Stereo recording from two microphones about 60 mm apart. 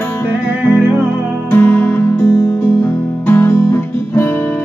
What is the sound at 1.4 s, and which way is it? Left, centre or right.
Music, left.